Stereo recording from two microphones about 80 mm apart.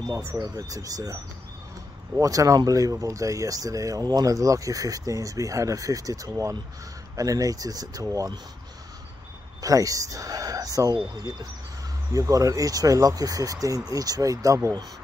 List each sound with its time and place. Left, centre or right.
0.4 s speech: right
2.1 s speech: right
9.6 s speech: right
12.1 s speech: right